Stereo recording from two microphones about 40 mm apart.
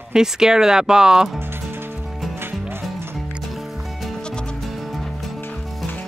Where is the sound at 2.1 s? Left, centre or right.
Centre.